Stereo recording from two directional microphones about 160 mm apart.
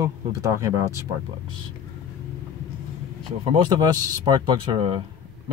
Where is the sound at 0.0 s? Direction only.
20° right (ahead or behind).